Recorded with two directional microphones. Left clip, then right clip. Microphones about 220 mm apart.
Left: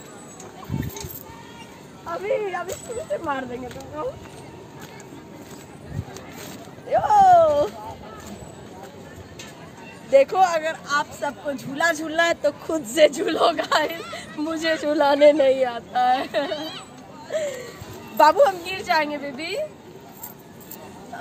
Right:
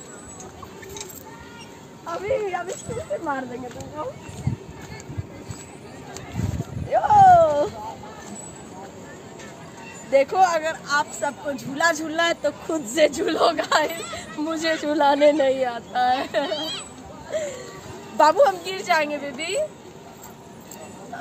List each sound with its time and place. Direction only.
2.1 s speech: 5° left (ahead or behind)
3.3 s speech: 15° left (ahead or behind)
6.9 s a sound: 10° left (ahead or behind)
10.1 s speech: 5° left (ahead or behind)
16.5 s a sound: 40° right (ahead or behind)
17.3 s speech: centre (ahead or behind)
18.1 s a woman's voice: 10° left (ahead or behind)
18.4 s speech: centre (ahead or behind)
18.7 s a woman's voice: 10° right (ahead or behind)